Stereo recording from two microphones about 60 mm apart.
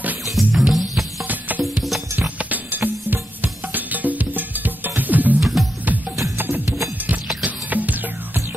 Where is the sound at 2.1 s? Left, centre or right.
Right.